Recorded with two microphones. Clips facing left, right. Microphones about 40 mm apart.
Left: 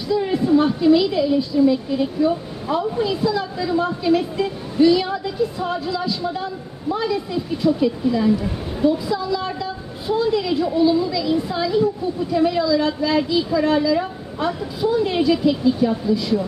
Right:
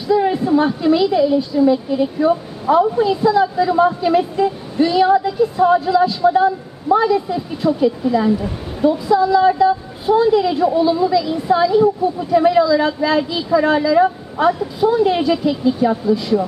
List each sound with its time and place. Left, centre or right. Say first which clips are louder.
0.1 s a woman's voice: right 3 dB; centre
2.1 s speech: right 3 dB; right
3.0 s a woman's voice: right 7 dB; centre